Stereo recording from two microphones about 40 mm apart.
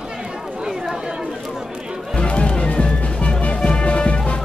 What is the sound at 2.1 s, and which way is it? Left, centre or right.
Music, left.